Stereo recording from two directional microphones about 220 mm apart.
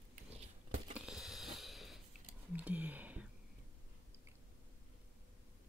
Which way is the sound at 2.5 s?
5° right (ahead or behind).